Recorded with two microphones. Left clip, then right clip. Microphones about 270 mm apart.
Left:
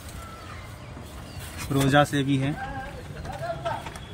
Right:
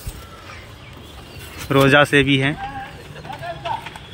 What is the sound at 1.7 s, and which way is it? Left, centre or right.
Speech, right.